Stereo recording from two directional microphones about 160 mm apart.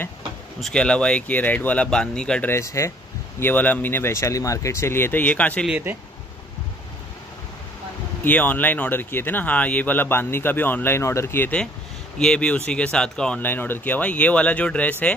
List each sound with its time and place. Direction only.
0.6 s speech: 5° left (ahead or behind)
5.7 s speech: 10° right (ahead or behind)
8.2 s speech: 10° left (ahead or behind)